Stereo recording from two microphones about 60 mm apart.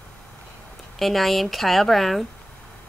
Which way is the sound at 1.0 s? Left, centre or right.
Centre.